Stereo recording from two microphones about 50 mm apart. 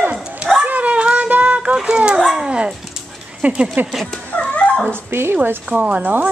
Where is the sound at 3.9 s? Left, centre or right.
Centre.